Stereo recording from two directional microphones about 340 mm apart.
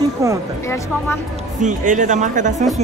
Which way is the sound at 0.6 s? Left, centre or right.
Centre.